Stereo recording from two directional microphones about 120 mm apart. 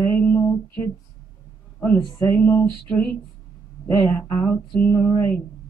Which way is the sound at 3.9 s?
20° left (ahead or behind).